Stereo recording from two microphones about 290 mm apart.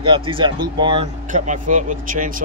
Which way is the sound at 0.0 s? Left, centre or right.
Centre.